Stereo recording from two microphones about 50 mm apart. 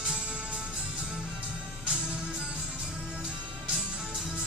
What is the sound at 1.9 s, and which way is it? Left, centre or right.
Music, centre.